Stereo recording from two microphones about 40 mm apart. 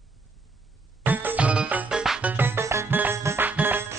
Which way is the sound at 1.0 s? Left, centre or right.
Right.